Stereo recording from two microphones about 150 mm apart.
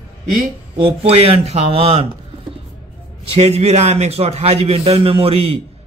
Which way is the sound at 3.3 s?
45° right (ahead or behind).